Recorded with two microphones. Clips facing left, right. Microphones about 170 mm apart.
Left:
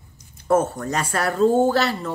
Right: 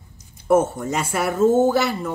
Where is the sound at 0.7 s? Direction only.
10° right (ahead or behind).